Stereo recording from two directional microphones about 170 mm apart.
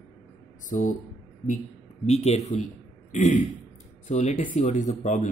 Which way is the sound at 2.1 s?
40° left (ahead or behind).